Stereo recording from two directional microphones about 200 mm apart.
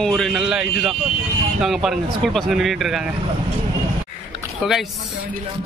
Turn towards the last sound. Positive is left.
turn(degrees=0)  # may be behind; listen again after turning